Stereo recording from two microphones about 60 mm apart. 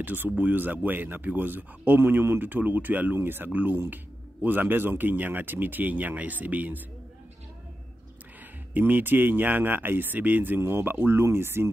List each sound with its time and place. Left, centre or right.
0.0 s speech: right
8.7 s speech: right